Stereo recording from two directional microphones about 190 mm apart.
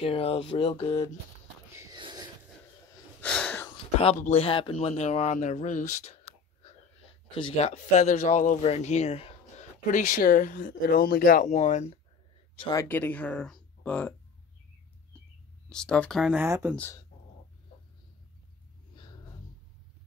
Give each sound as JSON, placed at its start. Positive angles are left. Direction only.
{"t": 0.0, "sound": "speech", "side_deg": 30}
{"t": 1.7, "sound": "a sound", "side_deg": -20}
{"t": 3.2, "sound": "sneeze", "side_deg": 5}
{"t": 4.0, "sound": "speech", "side_deg": 35}
{"t": 6.6, "sound": "speech", "side_deg": 30}
{"t": 11.4, "sound": "speech", "side_deg": 40}
{"t": 12.6, "sound": "speech", "side_deg": 15}
{"t": 15.7, "sound": "speech", "side_deg": 5}
{"t": 16.4, "sound": "speech", "side_deg": -15}
{"t": 16.7, "sound": "speech", "side_deg": 10}
{"t": 18.9, "sound": "a sound", "side_deg": 25}